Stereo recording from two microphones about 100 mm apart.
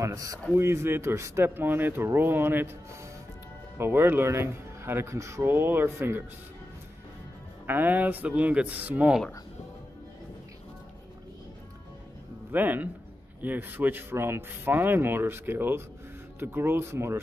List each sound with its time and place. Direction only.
0.0 s a man's voice: 35° right (ahead or behind)
7.6 s speech: 20° right (ahead or behind)
12.4 s a man's voice: 15° right (ahead or behind)